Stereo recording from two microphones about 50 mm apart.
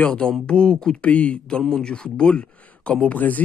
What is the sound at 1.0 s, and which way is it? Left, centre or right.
Speech, left.